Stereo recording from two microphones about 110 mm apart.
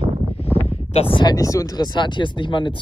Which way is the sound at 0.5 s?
75° left (ahead or behind).